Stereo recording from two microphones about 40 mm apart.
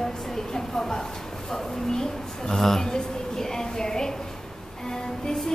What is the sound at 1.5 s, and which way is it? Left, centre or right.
A woman's voice, centre.